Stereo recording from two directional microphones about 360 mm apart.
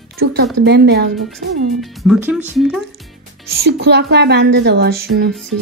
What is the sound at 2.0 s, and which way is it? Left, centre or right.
Speech, centre.